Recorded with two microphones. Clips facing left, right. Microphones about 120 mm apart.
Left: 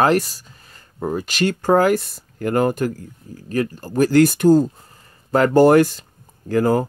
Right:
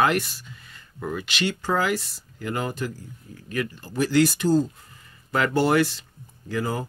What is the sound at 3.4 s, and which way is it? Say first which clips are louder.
Speech: left 7 dB; 40° left (ahead or behind).